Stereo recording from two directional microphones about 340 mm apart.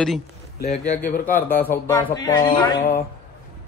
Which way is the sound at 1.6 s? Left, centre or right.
Centre.